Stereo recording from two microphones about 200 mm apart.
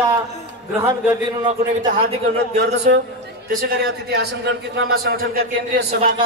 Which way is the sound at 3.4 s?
50° right (ahead or behind).